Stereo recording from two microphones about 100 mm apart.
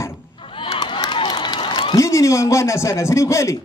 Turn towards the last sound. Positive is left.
turn(degrees=30)  # may be behind; listen again after turning